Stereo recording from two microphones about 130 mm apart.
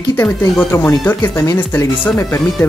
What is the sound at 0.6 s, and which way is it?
Speech, 15° left (ahead or behind).